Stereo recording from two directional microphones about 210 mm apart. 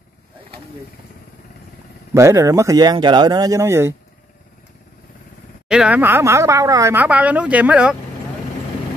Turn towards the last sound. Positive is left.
turn(degrees=-5)  # may be behind; listen again after turning